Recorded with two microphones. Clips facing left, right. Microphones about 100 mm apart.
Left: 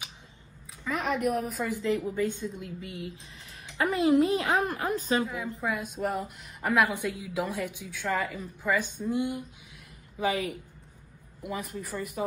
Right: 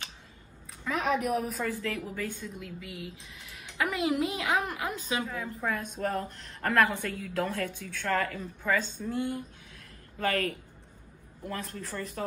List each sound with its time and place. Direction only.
0.8 s a woman's voice: centre (ahead or behind)
1.7 s speech: 20° left (ahead or behind); by 5.2 s 40° left (ahead or behind)
5.2 s a woman's voice: 10° left (ahead or behind)